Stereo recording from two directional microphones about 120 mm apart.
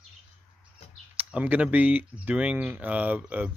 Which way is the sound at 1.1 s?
15° right (ahead or behind).